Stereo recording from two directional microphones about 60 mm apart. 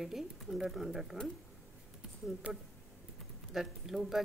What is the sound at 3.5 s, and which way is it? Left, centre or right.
Speech, centre.